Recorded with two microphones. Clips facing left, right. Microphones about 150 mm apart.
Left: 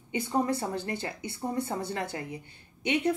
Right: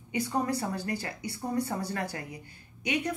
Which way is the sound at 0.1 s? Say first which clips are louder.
Left 1 dB; 25° left (ahead or behind).